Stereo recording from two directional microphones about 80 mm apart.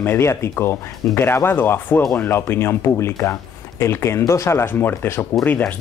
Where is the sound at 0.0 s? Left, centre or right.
Left.